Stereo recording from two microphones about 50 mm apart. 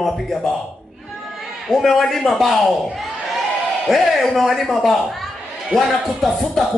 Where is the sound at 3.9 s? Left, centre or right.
Centre.